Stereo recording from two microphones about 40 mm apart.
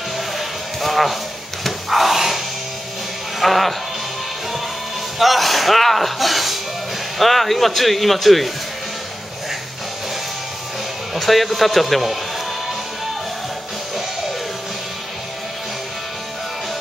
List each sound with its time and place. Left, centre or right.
0.4 s music: centre
1.6 s a sound: centre
3.3 s speech: centre
5.2 s music: centre
7.2 s speech: centre
11.1 s speech: centre